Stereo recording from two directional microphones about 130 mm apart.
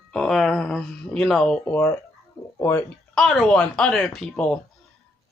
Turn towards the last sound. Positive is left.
turn(degrees=5)  # may be behind; listen again after turning